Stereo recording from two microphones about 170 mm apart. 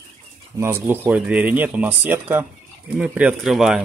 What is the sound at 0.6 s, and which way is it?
Speech, 15° right (ahead or behind).